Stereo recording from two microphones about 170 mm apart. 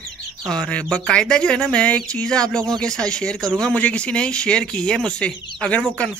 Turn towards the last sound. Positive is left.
turn(degrees=5)  # may be behind; listen again after turning